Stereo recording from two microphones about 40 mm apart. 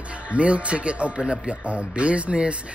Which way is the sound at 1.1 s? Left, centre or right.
Centre.